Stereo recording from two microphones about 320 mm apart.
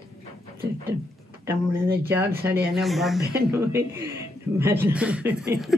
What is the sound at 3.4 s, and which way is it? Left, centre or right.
A woman's voice, centre.